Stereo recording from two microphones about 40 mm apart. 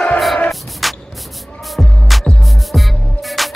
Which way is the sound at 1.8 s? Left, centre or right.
Centre.